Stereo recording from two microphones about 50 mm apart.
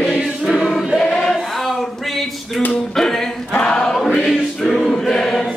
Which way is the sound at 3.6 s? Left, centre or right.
Centre.